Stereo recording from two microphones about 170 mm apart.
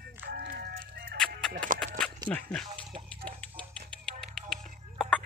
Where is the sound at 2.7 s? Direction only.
35° right (ahead or behind).